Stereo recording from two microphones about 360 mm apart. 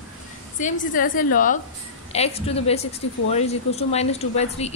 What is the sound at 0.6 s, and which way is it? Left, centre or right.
A woman's voice, left.